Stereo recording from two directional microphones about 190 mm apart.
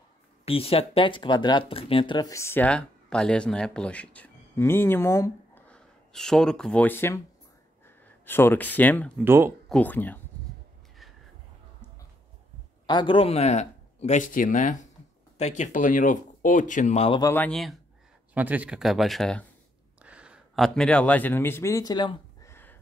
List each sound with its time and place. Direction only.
0.5 s speech: 30° left (ahead or behind); by 9.1 s 10° left (ahead or behind)
9.2 s speech: 10° right (ahead or behind)
9.7 s speech: 10° left (ahead or behind)
12.8 s speech: 25° left (ahead or behind)
17.2 s speech: 10° left (ahead or behind)
18.3 s speech: 10° right (ahead or behind); by 22.5 s 25° left (ahead or behind)
22.5 s a sound: 10° left (ahead or behind)